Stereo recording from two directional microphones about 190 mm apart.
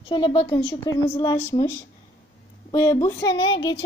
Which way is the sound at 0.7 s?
15° left (ahead or behind).